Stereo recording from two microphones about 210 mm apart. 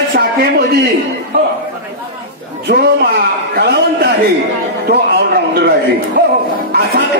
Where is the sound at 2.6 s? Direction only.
50° right (ahead or behind).